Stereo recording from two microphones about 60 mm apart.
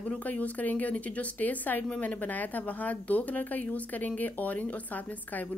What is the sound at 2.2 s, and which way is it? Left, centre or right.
Speech, left.